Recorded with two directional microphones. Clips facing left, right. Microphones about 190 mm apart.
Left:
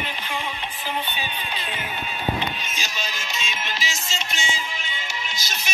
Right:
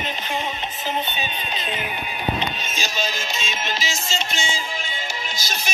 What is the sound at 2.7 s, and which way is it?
Music, 25° right (ahead or behind).